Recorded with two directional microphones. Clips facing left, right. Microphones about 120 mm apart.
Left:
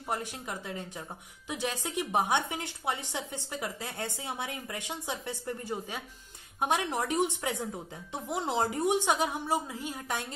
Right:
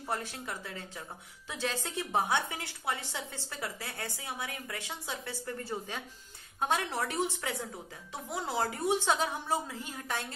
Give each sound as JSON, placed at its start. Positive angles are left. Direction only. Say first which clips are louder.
{"t": 0.1, "sound": "a woman's voice", "louder": "left 2 dB", "side_deg": 15}